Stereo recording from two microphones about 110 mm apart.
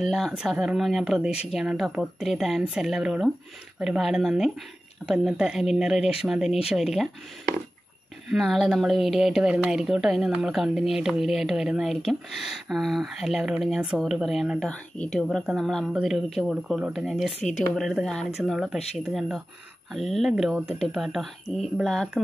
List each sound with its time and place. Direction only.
0.0 s speech: centre (ahead or behind)
8.3 s speech: centre (ahead or behind)
14.7 s speech: 10° left (ahead or behind)
17.3 s speech: 90° left
17.7 s speech: centre (ahead or behind)